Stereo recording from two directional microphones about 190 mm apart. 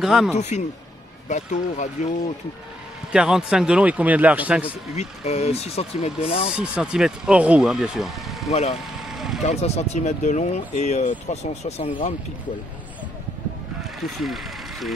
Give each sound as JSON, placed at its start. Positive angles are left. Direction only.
{"t": 0.0, "sound": "speech", "side_deg": 0}
{"t": 0.4, "sound": "speech", "side_deg": 35}
{"t": 3.1, "sound": "a man's voice", "side_deg": -5}
{"t": 4.9, "sound": "speech", "side_deg": 35}
{"t": 6.5, "sound": "speech", "side_deg": -5}
{"t": 8.5, "sound": "speech", "side_deg": 35}
{"t": 8.7, "sound": "vehicle", "side_deg": 0}
{"t": 9.4, "sound": "speech", "side_deg": 35}
{"t": 13.7, "sound": "vehicle", "side_deg": 0}